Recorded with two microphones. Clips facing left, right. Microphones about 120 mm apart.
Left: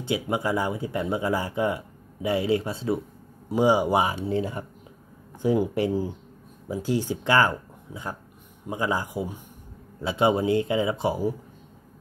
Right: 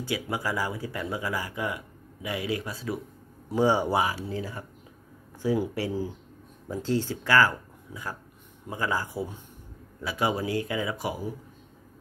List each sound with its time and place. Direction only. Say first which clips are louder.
0.0 s speech: left 4 dB; 25° left (ahead or behind)
3.4 s speech: left 3 dB; 15° left (ahead or behind)
4.0 s speech: left 4 dB; 25° left (ahead or behind)
9.9 s speech: left 6 dB; 25° left (ahead or behind)